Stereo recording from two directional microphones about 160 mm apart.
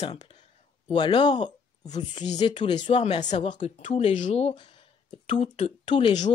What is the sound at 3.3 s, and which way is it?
Speech, 45° left (ahead or behind).